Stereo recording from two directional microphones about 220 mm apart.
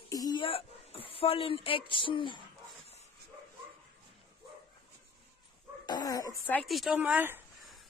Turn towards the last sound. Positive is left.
turn(degrees=-10)  # may be behind; listen again after turning